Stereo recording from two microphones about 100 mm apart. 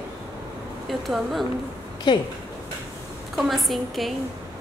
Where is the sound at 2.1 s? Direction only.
50° left (ahead or behind).